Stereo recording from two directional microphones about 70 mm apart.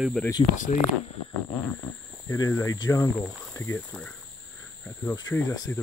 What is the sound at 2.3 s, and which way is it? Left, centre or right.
Speech, left.